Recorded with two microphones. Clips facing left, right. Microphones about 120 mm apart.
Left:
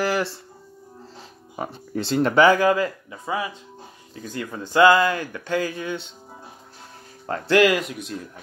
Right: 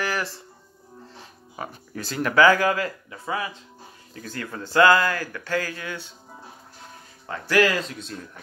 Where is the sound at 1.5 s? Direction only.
30° left (ahead or behind).